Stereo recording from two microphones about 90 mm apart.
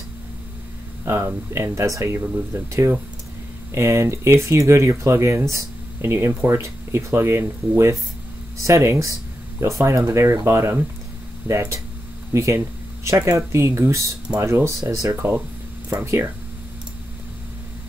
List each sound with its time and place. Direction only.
1.0 s speech: 30° right (ahead or behind)
11.4 s speech: 15° right (ahead or behind)
12.3 s speech: 30° right (ahead or behind)